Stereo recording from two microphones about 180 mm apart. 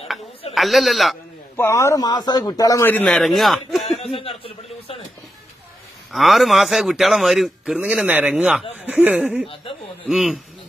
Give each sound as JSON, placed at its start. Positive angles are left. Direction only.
{"t": 0.6, "sound": "a man's voice", "side_deg": 0}
{"t": 1.6, "sound": "a man's voice", "side_deg": 15}
{"t": 3.9, "sound": "speech", "side_deg": 35}
{"t": 6.1, "sound": "a man's voice", "side_deg": 0}